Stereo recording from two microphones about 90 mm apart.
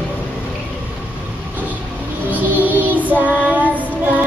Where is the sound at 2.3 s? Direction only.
20° right (ahead or behind).